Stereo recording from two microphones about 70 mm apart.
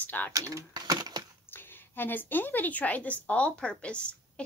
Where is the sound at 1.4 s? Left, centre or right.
Left.